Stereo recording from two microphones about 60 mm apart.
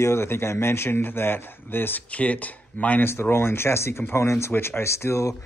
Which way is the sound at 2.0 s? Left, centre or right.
Left.